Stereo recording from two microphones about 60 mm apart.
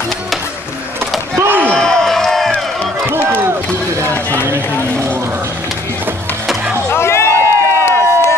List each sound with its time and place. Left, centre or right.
1.4 s slam: right
1.8 s a sound: centre
3.3 s run: right
4.0 s run: left
6.9 s music: left